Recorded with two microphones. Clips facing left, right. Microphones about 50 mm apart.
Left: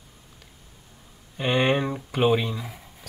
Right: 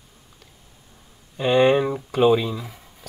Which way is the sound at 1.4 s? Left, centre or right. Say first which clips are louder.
Right 5 dB; centre.